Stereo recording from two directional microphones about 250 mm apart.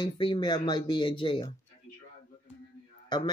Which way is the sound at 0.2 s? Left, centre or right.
Centre.